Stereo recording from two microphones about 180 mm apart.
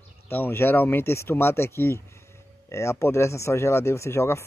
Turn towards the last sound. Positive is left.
turn(degrees=15)  # may be behind; listen again after turning